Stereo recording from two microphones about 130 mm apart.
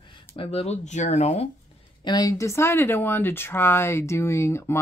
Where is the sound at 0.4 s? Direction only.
50° left (ahead or behind).